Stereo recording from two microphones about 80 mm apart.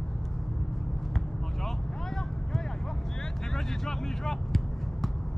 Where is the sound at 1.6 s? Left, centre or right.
Centre.